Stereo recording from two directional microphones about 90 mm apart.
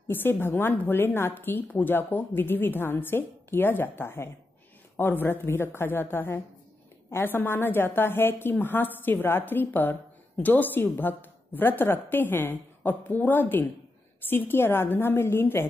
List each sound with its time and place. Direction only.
0.1 s a woman's voice: 25° left (ahead or behind)